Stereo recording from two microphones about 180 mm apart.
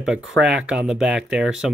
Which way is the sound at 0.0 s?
5° right (ahead or behind).